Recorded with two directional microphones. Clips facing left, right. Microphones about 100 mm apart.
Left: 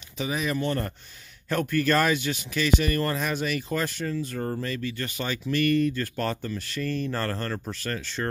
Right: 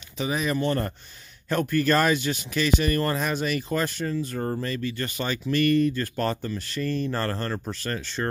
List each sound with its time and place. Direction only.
0.2 s speech: 35° right (ahead or behind)